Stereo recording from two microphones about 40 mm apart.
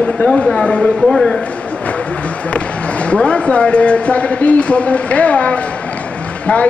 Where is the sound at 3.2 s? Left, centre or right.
Left.